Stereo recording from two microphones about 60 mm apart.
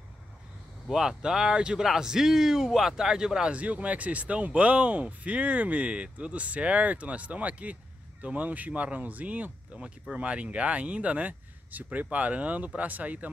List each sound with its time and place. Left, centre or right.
0.8 s speech: centre
3.5 s speech: right